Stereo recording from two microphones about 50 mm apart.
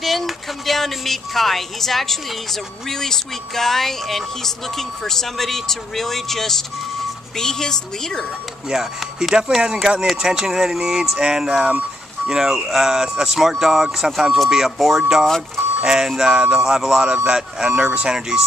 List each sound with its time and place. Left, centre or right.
0.0 s a woman's voice: centre
9.3 s speech: centre
15.2 s a woman's voice: centre
15.8 s speech: centre